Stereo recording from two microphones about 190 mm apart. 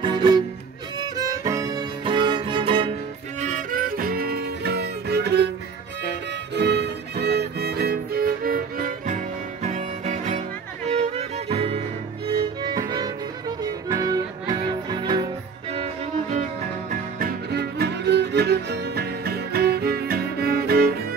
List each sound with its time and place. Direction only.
0.0 s music: 20° right (ahead or behind)
3.3 s music: 40° right (ahead or behind); by 5.5 s 60° right (ahead or behind)
6.5 s violin: 60° right (ahead or behind); by 10.4 s 40° right (ahead or behind)
10.9 s music: 35° right (ahead or behind)
15.7 s music: 35° right (ahead or behind)
16.9 s music: 55° right (ahead or behind)